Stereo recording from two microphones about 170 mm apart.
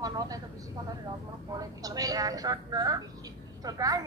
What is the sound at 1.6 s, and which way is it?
A woman's voice, 20° right (ahead or behind).